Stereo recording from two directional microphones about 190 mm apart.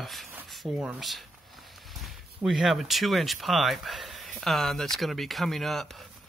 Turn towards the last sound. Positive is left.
turn(degrees=0)  # may be behind; listen again after turning